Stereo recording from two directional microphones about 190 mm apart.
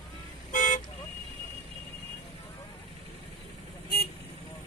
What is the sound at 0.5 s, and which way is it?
Vehicle, 40° left (ahead or behind).